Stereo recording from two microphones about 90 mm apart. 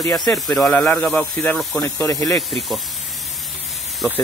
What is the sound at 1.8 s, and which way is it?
Speech, 35° left (ahead or behind).